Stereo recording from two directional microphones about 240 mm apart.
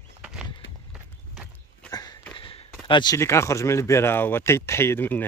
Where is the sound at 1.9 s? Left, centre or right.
Centre.